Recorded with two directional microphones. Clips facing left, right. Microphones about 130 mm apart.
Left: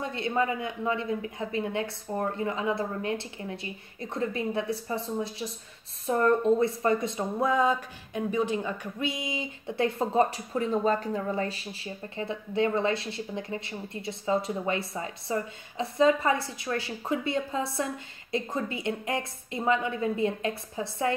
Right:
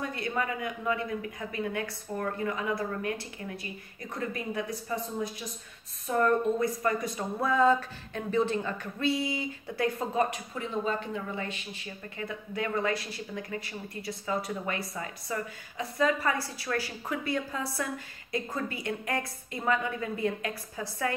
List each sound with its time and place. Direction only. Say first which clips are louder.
0.0 s speech: left 4 dB; 25° left (ahead or behind)